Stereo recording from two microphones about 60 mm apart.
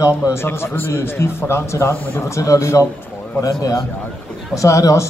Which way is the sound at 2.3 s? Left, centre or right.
Left.